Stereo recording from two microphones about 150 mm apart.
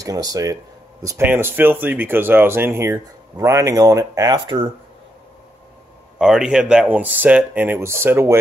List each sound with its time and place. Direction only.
0.0 s speech: 25° right (ahead or behind)
6.1 s speech: 5° right (ahead or behind)